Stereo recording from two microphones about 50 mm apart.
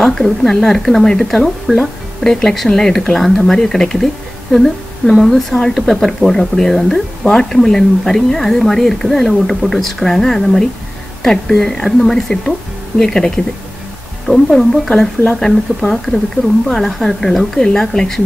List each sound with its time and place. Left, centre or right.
0.0 s a woman's voice: centre
14.9 s a woman's voice: centre